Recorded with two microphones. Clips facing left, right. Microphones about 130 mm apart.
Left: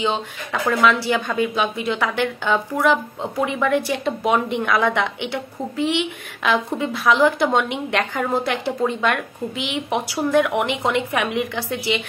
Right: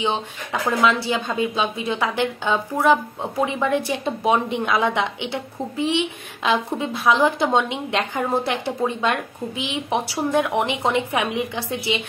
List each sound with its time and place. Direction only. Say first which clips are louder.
0.0 s a woman's voice: left 1 dB; 20° right (ahead or behind)